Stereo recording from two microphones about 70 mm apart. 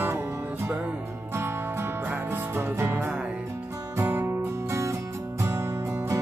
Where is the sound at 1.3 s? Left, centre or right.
Right.